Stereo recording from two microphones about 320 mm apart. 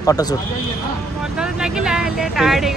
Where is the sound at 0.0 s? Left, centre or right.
Centre.